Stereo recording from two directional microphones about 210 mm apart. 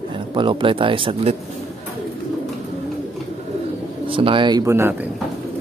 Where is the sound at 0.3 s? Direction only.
25° right (ahead or behind).